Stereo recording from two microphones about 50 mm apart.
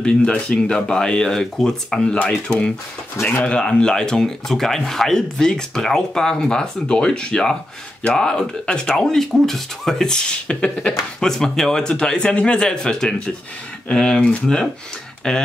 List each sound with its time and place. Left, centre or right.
0.0 s speech: centre
3.2 s speech: left
3.4 s speech: centre
11.2 s speech: centre